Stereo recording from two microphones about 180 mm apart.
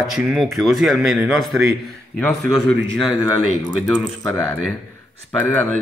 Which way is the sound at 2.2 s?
10° left (ahead or behind).